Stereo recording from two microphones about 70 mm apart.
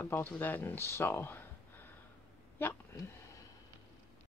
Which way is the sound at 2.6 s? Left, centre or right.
Left.